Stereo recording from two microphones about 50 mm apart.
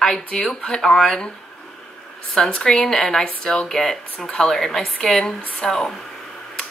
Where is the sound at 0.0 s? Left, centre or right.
Centre.